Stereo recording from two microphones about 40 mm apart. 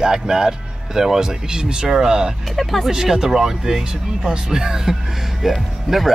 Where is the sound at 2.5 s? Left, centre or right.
Centre.